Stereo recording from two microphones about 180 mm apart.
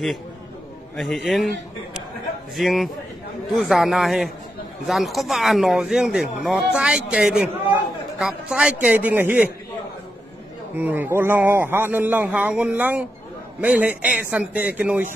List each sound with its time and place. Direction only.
0.9 s speech: centre (ahead or behind)
2.5 s a man's voice: centre (ahead or behind)
10.8 s a man's voice: 10° right (ahead or behind)